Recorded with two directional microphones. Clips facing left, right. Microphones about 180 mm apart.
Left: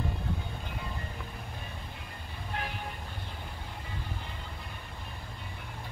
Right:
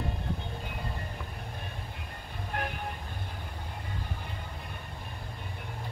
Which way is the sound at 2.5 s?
50° right (ahead or behind).